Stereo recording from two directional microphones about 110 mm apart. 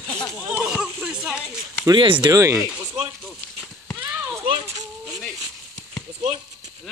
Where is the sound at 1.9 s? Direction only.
50° right (ahead or behind).